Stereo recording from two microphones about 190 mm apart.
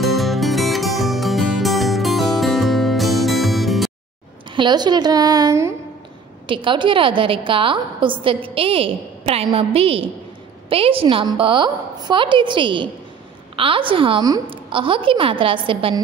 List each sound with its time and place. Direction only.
0.0 s music: centre (ahead or behind)
4.6 s a woman's voice: 25° right (ahead or behind)